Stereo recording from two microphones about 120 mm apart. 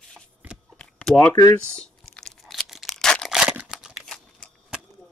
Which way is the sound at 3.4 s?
5° right (ahead or behind).